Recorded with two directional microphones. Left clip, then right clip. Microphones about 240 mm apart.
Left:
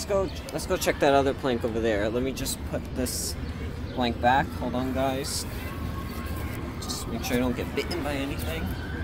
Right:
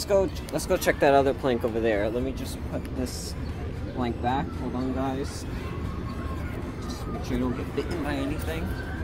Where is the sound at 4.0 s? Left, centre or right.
Left.